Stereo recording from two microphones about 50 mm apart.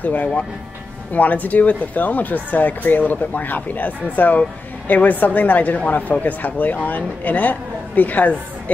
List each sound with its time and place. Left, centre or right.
0.0 s speech: left